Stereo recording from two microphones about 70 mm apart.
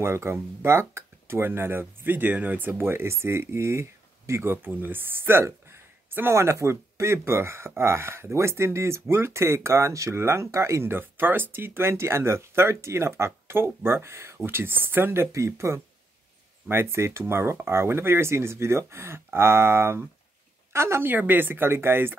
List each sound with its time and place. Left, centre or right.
0.0 s speech: right
6.3 s speech: right
15.3 s speech: right
21.1 s speech: right